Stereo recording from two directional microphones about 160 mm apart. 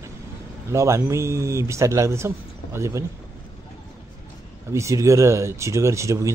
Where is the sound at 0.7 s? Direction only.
20° right (ahead or behind).